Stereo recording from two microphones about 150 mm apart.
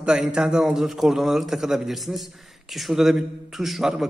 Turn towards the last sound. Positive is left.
turn(degrees=0)  # may be behind; listen again after turning